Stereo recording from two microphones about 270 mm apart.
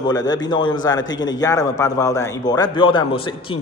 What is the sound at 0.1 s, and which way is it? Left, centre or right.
A man's voice, centre.